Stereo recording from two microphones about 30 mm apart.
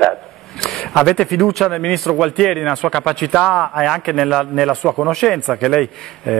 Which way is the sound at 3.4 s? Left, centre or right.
Centre.